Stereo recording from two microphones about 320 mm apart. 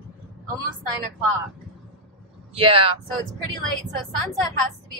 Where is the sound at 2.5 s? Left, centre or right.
Centre.